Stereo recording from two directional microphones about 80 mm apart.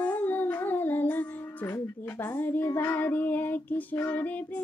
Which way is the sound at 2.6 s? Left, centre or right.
Left.